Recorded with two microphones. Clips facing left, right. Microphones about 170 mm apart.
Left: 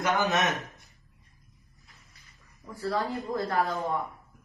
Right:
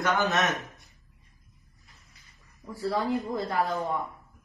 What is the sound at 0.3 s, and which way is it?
Mantra, centre (ahead or behind).